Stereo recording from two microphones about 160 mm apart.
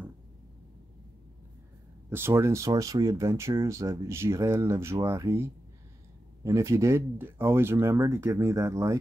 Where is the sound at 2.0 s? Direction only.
15° right (ahead or behind).